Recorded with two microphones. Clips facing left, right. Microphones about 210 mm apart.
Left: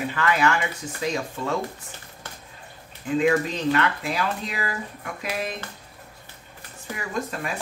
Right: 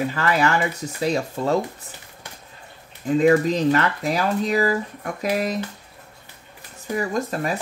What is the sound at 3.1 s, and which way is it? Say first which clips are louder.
Speech: right 5 dB; 40° right (ahead or behind).